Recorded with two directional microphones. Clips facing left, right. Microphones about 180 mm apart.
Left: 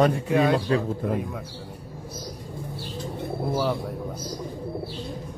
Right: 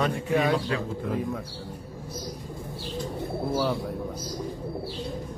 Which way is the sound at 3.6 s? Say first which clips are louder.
Left 1 dB; centre (ahead or behind).